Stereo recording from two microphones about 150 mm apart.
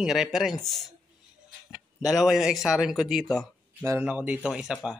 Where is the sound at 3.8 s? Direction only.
10° right (ahead or behind).